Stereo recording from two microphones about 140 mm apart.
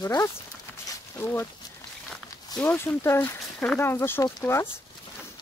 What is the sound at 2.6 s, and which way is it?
Speech, 15° left (ahead or behind).